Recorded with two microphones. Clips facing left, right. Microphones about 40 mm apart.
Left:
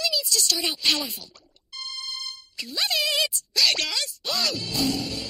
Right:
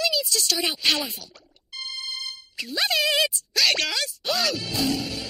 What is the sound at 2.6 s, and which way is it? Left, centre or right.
Speech, centre.